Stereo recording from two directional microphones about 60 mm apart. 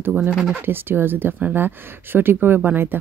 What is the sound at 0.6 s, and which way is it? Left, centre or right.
Speech, right.